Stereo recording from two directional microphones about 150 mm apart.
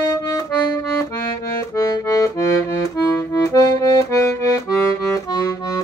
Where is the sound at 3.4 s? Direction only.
20° left (ahead or behind).